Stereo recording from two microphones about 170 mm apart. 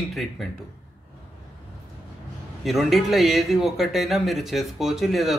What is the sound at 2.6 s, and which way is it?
Speech, centre (ahead or behind).